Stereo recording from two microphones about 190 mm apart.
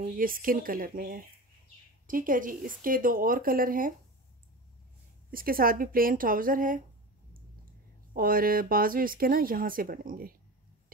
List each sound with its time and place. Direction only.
0.0 s speech: 45° right (ahead or behind)
5.3 s speech: 50° right (ahead or behind)
8.1 s speech: 50° right (ahead or behind)